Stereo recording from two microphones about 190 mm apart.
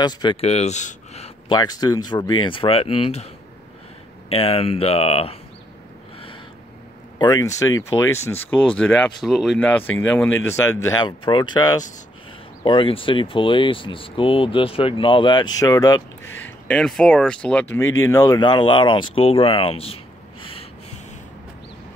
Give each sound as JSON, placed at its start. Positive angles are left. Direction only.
{"t": 0.0, "sound": "speech", "side_deg": 25}
{"t": 1.5, "sound": "speech", "side_deg": 20}
{"t": 4.3, "sound": "speech", "side_deg": 30}
{"t": 7.2, "sound": "speech", "side_deg": 20}
{"t": 10.9, "sound": "speech", "side_deg": 25}
{"t": 16.4, "sound": "speech", "side_deg": 5}
{"t": 20.4, "sound": "snort", "side_deg": 30}